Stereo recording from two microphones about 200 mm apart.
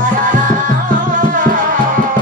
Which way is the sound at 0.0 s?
40° right (ahead or behind).